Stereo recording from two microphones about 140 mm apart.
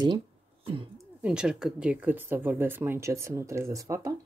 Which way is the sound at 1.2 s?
5° right (ahead or behind).